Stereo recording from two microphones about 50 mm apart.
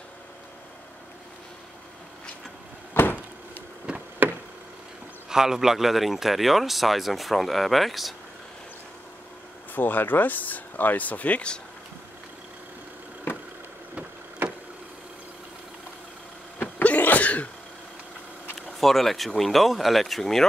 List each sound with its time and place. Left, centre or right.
2.9 s a sound: left
3.9 s a sound: right
5.3 s speech: centre
9.8 s speech: left
16.7 s cough: left
18.8 s speech: centre